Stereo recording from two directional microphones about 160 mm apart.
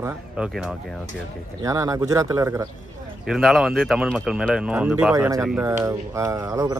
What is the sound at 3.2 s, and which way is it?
Speech, 5° right (ahead or behind).